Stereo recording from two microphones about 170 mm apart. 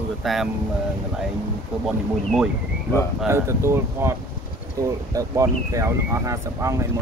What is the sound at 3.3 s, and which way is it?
Speech, 15° right (ahead or behind).